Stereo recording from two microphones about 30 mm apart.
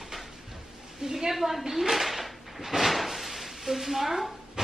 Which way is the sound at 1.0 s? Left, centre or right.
Centre.